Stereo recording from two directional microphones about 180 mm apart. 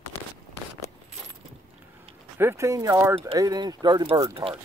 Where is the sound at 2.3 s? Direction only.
15° right (ahead or behind).